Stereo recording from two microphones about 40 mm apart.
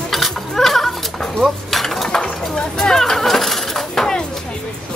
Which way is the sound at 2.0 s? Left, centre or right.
Centre.